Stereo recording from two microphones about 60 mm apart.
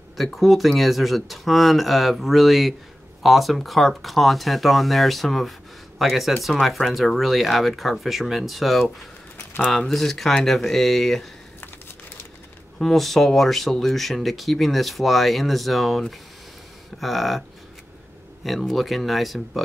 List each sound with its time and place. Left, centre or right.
0.2 s speech: centre
12.7 s speech: centre
18.4 s speech: centre